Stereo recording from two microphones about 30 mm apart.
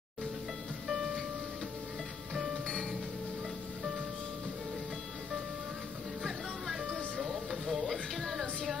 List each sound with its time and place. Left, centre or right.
0.8 s music: centre
2.6 s music: left
7.5 s music: centre